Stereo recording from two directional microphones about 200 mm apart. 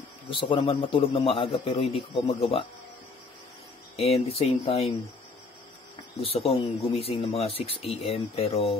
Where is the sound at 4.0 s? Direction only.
30° left (ahead or behind).